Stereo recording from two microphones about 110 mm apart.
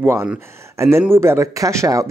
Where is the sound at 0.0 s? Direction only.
15° right (ahead or behind).